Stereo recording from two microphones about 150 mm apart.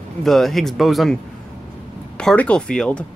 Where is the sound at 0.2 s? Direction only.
Centre (ahead or behind).